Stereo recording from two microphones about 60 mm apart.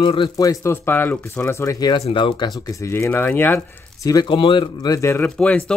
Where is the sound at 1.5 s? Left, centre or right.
Left.